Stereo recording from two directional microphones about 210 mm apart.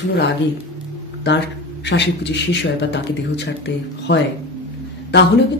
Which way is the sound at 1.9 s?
55° left (ahead or behind).